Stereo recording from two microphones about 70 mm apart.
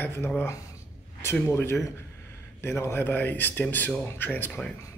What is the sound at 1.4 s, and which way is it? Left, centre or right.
Speech, left.